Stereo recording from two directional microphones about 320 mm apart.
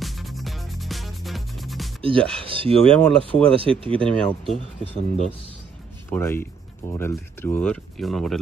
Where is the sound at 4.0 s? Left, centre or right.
Centre.